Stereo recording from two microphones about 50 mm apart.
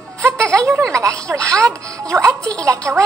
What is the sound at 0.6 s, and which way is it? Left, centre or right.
A woman's voice, right.